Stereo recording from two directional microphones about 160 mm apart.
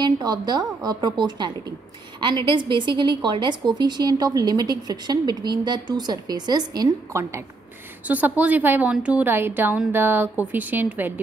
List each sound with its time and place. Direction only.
0.0 s a woman's voice: 25° right (ahead or behind)